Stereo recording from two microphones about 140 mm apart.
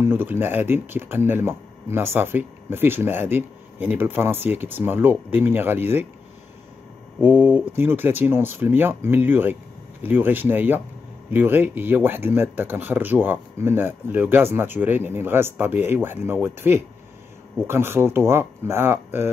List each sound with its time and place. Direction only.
0.0 s speech: 15° right (ahead or behind)
7.2 s speech: 15° right (ahead or behind)